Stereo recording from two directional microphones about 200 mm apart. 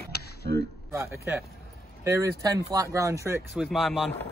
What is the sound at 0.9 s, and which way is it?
Speech, 10° right (ahead or behind).